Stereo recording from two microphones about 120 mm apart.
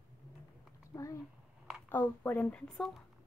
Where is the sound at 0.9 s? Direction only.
25° left (ahead or behind); by 2.9 s 5° left (ahead or behind).